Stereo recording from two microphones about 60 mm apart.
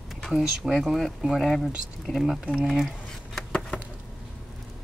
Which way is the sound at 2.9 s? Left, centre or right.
Centre.